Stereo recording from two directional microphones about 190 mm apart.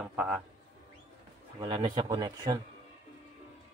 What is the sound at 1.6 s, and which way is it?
Speech, 25° right (ahead or behind).